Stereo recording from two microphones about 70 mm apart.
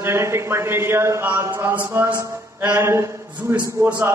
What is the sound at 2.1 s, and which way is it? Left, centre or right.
A man's voice, right.